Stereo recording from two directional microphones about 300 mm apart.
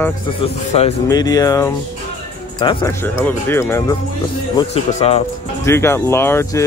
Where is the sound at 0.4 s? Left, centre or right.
Left.